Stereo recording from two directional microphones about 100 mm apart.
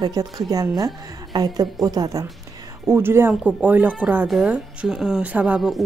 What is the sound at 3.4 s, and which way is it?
A woman's voice, 10° right (ahead or behind).